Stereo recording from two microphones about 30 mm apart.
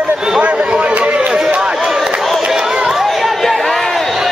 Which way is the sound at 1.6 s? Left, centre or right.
Right.